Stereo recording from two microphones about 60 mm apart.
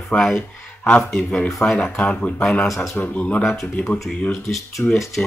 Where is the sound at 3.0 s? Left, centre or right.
Left.